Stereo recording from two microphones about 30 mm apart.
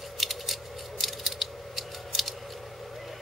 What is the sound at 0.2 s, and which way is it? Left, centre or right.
Scissors, centre.